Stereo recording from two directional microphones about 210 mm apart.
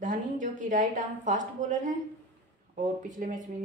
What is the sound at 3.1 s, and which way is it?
Speech, 40° right (ahead or behind).